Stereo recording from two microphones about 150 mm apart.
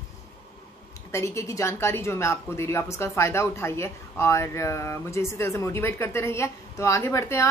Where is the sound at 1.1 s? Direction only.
20° left (ahead or behind).